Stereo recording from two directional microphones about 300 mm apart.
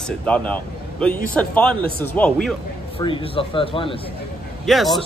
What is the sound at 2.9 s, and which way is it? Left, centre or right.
Speech, centre.